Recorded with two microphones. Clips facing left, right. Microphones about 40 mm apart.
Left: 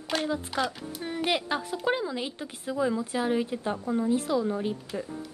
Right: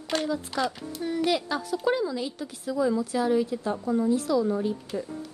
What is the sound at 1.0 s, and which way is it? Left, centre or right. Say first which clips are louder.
A woman's voice: right 3 dB; left.